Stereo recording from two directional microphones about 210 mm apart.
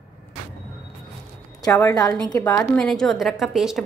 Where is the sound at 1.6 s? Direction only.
15° left (ahead or behind); by 3.8 s centre (ahead or behind).